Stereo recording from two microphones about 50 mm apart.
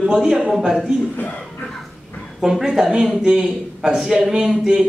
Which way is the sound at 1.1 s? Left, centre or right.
Left.